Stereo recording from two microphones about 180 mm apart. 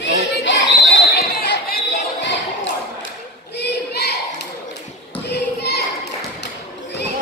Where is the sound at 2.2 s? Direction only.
90° left.